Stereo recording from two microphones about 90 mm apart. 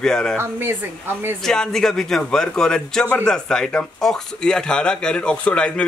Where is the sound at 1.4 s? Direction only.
5° left (ahead or behind).